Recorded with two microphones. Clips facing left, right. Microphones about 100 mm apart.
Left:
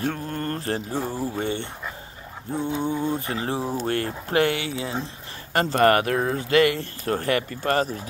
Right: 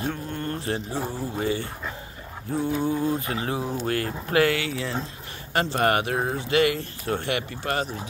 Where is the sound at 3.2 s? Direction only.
35° left (ahead or behind).